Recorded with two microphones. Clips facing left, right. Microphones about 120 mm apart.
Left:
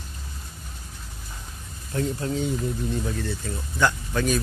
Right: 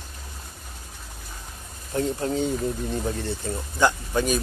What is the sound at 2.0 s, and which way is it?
Speech, 35° right (ahead or behind).